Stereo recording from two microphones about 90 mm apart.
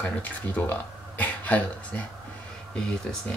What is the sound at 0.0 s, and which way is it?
Speech, 15° left (ahead or behind).